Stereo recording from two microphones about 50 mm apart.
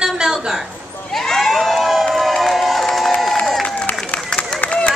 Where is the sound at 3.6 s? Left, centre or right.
Left.